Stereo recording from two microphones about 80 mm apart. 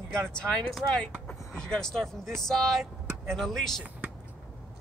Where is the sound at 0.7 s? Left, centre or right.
Centre.